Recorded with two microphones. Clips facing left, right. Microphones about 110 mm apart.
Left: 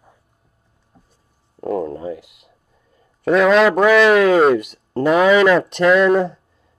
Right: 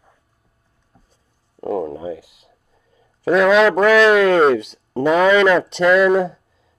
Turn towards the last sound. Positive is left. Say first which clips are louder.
# left 1 dB
turn(degrees=-5)  # may be behind; listen again after turning